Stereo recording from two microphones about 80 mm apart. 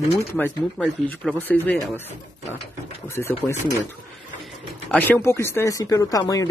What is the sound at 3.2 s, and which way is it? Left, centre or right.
Speech, left.